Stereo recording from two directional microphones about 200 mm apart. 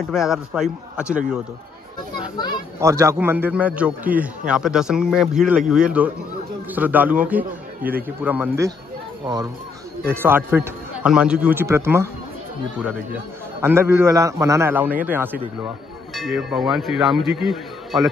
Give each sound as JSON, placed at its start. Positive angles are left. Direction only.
{"t": 0.1, "sound": "speech", "side_deg": 0}
{"t": 2.3, "sound": "a child's voice", "side_deg": 20}
{"t": 2.8, "sound": "a man's voice", "side_deg": -15}
{"t": 13.6, "sound": "a man's voice", "side_deg": -10}
{"t": 16.2, "sound": "speech", "side_deg": 0}